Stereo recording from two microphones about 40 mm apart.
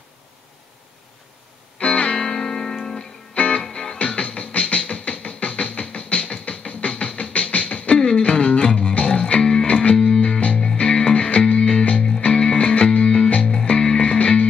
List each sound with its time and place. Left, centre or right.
1.9 s music: left
3.3 s music: left
3.6 s music: centre
4.0 s music: left
8.0 s music: left